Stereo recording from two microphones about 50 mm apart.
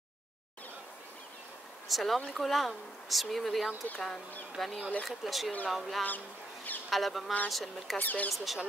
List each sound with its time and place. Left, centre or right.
1.9 s speech: centre
6.0 s a sound: left
6.9 s speech: centre
8.0 s speech: left
8.5 s speech: centre